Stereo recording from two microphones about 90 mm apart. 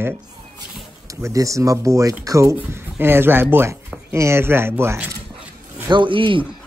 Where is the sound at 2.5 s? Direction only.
25° right (ahead or behind).